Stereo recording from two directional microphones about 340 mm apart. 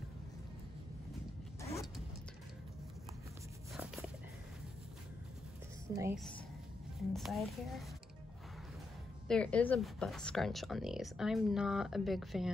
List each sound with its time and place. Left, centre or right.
1.6 s zipper: centre
3.7 s a sound: centre
5.9 s a woman's voice: centre
9.3 s speech: centre